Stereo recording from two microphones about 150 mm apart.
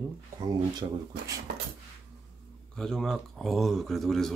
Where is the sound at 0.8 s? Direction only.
40° right (ahead or behind).